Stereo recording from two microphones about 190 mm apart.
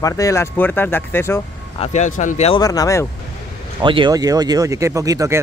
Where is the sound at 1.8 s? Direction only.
40° left (ahead or behind).